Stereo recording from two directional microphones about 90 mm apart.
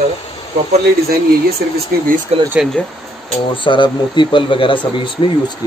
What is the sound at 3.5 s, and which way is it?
Speech, 65° left (ahead or behind).